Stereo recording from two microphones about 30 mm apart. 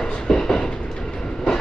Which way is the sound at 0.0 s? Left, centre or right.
Left.